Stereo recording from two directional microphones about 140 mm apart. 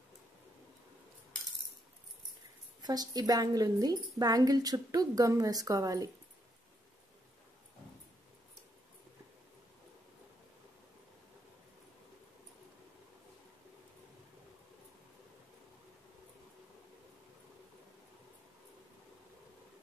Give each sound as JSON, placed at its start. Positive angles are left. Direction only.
{"t": 2.8, "sound": "a woman's voice", "side_deg": -30}